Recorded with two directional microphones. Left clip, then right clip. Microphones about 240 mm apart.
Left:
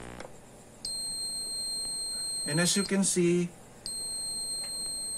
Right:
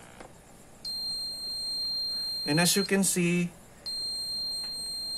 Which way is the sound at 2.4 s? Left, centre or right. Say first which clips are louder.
Right 3 dB; right.